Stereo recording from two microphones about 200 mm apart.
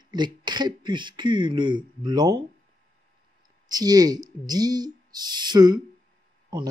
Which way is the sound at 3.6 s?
20° right (ahead or behind).